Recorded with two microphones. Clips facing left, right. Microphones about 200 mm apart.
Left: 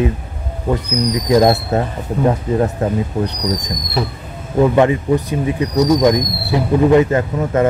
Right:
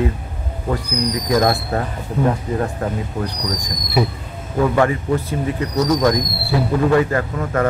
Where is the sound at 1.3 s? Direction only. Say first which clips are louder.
Left 5 dB; 20° left (ahead or behind).